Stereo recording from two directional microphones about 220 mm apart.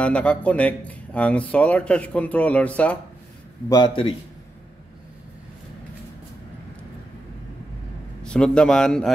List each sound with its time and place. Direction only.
0.0 s speech: 5° left (ahead or behind)
3.6 s a man's voice: 20° left (ahead or behind)
8.2 s a man's voice: 5° left (ahead or behind)